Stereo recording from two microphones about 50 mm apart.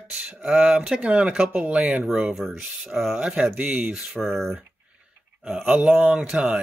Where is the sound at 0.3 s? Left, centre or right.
Centre.